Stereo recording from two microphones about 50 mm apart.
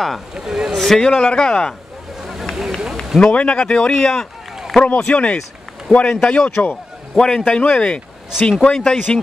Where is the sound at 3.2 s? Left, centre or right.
Left.